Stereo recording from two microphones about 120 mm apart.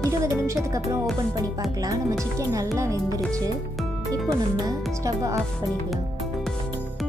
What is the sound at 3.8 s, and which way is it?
Music, centre (ahead or behind).